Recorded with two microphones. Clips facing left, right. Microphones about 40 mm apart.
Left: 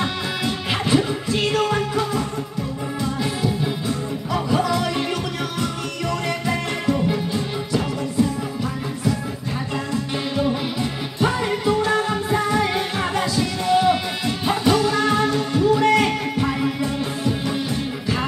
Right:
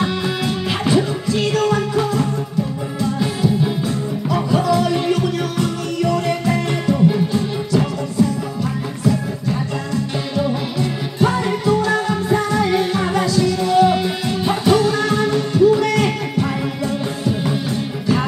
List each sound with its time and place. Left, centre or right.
0.0 s music: centre
3.0 s music: centre
4.7 s music: centre
10.3 s music: centre
15.8 s music: centre